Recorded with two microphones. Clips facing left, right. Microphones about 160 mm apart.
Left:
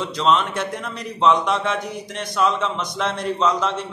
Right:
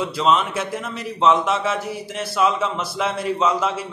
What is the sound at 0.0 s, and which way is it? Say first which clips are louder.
A man's voice: even; 5° right (ahead or behind).